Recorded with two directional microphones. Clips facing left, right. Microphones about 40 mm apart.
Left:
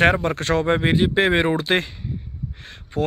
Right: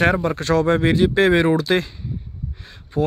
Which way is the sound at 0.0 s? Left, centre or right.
Left.